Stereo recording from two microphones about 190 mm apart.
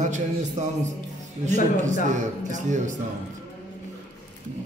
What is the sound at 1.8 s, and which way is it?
A man's voice, 40° right (ahead or behind).